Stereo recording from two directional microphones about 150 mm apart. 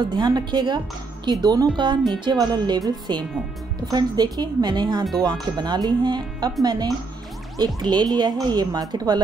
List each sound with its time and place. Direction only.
0.1 s speech: 30° right (ahead or behind)